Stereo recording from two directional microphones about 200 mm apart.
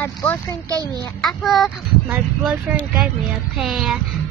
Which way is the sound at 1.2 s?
Centre (ahead or behind).